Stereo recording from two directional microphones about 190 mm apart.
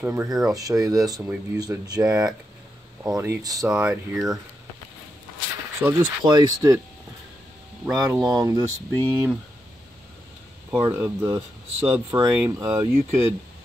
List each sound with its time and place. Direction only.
0.0 s speech: 10° right (ahead or behind)
0.6 s speech: 20° right (ahead or behind)
3.7 s speech: 5° right (ahead or behind)
5.8 s speech: 15° right (ahead or behind)
7.9 s speech: 20° right (ahead or behind)
10.7 s speech: 10° right (ahead or behind)